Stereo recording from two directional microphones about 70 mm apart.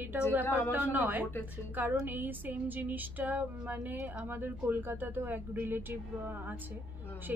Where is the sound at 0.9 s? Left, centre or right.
Right.